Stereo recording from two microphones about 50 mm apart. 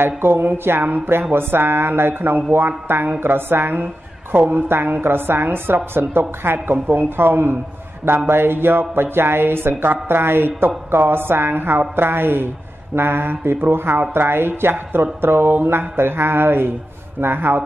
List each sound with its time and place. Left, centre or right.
0.0 s speech: right